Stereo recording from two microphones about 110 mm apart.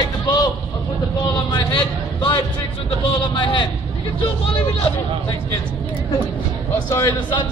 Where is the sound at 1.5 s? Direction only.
50° left (ahead or behind).